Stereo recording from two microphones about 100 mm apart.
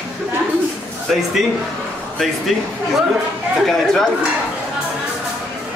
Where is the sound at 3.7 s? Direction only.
5° left (ahead or behind).